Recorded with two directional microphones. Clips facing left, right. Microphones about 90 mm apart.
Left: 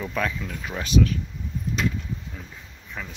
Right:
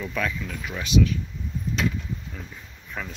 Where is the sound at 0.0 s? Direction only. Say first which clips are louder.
Left 1 dB; 25° left (ahead or behind).